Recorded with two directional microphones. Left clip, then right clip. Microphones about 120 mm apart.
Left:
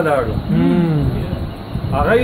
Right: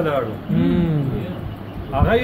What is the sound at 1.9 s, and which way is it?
Speech, 15° left (ahead or behind).